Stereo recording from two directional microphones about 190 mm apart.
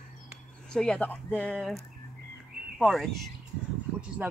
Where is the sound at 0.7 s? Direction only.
5° left (ahead or behind).